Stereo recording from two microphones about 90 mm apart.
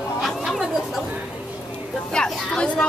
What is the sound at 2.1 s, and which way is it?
Speech, 10° left (ahead or behind).